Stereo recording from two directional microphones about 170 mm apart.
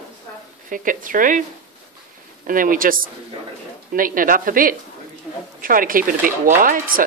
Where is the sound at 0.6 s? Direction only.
50° right (ahead or behind).